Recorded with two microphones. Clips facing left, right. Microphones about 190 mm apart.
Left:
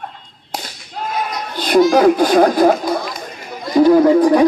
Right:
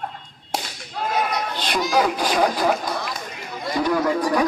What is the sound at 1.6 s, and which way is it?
A child's voice, 45° left (ahead or behind).